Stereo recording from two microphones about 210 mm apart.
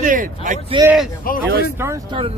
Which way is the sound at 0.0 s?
40° right (ahead or behind).